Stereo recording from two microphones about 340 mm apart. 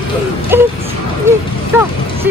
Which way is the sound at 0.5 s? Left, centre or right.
Centre.